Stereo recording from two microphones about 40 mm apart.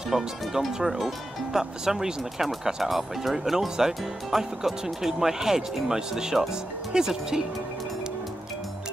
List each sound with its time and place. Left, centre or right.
0.1 s speech: centre